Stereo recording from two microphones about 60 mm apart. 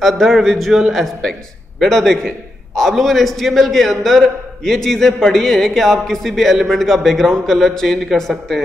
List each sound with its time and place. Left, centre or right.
0.0 s a man's voice: centre